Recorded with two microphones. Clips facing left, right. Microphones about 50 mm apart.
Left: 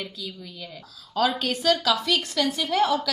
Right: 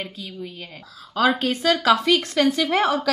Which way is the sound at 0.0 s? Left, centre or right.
Right.